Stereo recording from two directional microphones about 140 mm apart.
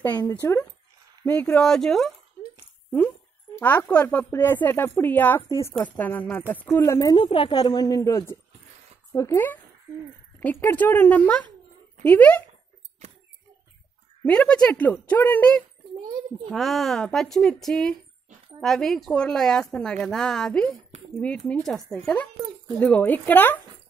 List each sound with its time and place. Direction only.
0.3 s a woman's voice: 20° left (ahead or behind); by 2.1 s centre (ahead or behind)
3.5 s a woman's voice: 10° left (ahead or behind)
14.2 s speech: 10° left (ahead or behind)
16.5 s a woman's voice: centre (ahead or behind)